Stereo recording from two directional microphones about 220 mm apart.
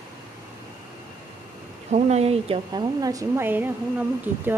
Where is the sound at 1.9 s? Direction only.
30° right (ahead or behind).